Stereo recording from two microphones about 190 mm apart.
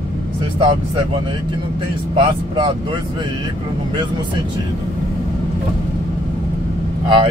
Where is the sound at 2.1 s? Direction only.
25° right (ahead or behind).